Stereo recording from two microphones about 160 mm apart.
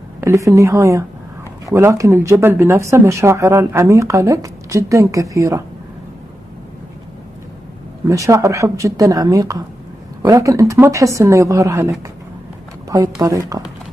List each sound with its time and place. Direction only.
0.2 s speech: 15° right (ahead or behind)
8.1 s speech: 20° right (ahead or behind)
12.9 s speech: 20° right (ahead or behind)